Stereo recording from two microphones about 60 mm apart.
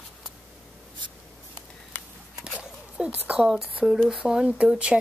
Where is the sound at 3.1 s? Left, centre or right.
Right.